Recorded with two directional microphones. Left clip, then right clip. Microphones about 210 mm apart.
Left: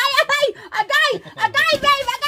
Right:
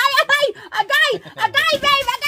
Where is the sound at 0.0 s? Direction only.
20° right (ahead or behind).